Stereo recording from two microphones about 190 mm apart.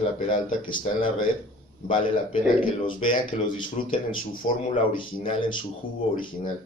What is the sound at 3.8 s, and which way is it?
Speech, 45° left (ahead or behind).